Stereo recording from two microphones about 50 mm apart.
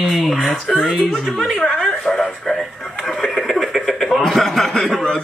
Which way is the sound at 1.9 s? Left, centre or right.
Centre.